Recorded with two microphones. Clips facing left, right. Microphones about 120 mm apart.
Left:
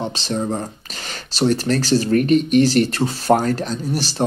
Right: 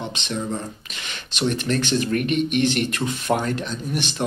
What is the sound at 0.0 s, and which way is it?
Speech, 35° left (ahead or behind).